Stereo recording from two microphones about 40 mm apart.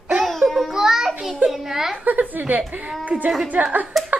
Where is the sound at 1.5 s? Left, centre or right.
Centre.